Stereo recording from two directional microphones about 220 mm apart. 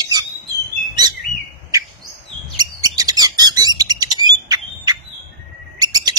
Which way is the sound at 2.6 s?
15° right (ahead or behind).